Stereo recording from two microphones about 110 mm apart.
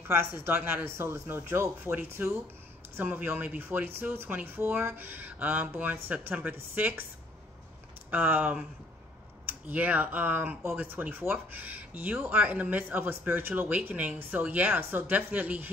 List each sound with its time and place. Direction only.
0.1 s speech: 20° right (ahead or behind)
8.1 s speech: 15° right (ahead or behind)